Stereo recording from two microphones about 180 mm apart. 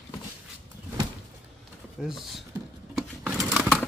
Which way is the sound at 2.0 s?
Centre (ahead or behind).